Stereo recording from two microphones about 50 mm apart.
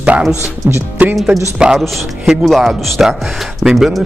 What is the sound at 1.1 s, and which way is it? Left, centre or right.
Speech, centre.